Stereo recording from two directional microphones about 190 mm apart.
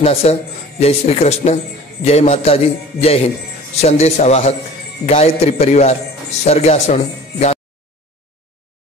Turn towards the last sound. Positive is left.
turn(degrees=35)  # may be behind; listen again after turning